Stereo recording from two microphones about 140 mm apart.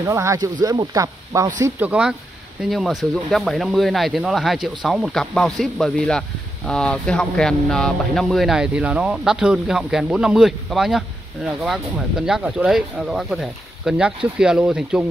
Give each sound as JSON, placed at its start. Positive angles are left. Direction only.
{"t": 0.0, "sound": "speech", "side_deg": -20}
{"t": 1.6, "sound": "speech", "side_deg": -10}